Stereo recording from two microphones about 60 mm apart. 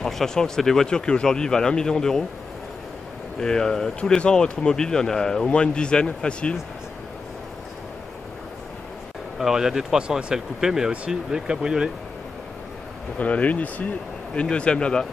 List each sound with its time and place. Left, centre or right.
0.0 s speech: centre
3.3 s speech: centre
9.4 s speech: centre
13.2 s speech: left